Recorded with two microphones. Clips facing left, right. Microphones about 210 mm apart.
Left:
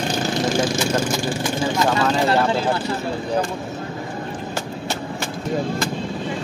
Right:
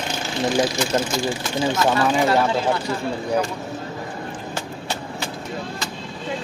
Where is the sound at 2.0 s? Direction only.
10° right (ahead or behind).